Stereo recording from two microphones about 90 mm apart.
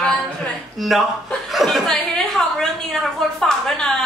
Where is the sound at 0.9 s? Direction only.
Centre (ahead or behind).